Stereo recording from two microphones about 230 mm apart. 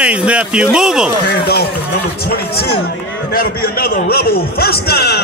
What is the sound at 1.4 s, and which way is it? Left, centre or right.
Run, left.